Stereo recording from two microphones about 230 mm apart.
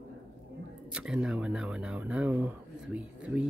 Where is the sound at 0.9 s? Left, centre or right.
Centre.